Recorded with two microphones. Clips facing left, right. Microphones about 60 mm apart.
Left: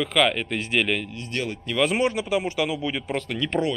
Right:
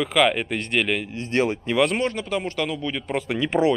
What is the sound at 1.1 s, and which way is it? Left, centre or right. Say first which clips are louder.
Speech: right 7 dB; right.